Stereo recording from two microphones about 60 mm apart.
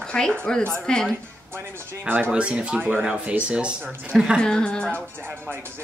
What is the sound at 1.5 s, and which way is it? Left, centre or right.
Speech, right.